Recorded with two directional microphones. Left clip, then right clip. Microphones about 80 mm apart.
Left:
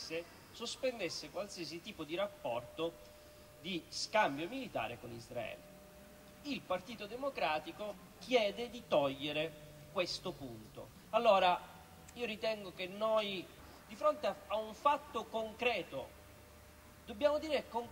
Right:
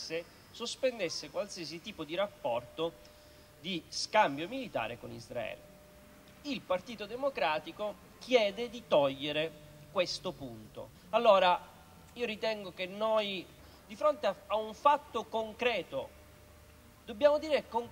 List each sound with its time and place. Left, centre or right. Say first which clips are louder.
0.1 s a man's voice: right 4 dB; right